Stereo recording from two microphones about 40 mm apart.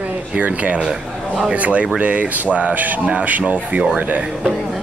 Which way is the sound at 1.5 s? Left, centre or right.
Right.